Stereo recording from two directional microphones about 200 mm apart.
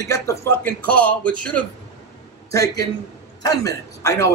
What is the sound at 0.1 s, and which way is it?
A man's voice, 15° left (ahead or behind).